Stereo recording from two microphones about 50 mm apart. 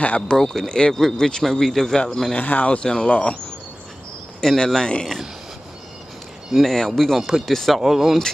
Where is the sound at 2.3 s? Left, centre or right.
Left.